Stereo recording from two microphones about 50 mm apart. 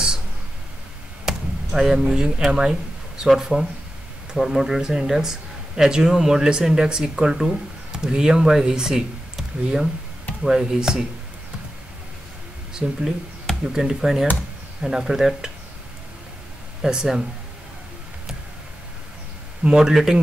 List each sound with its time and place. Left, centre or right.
1.2 s basketball bounce: centre
3.2 s speech: centre
12.8 s speech: centre
16.8 s speech: centre
19.6 s speech: centre
19.9 s speech: centre